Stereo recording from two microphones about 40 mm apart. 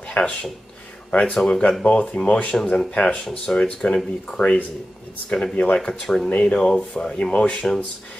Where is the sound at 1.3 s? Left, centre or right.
Centre.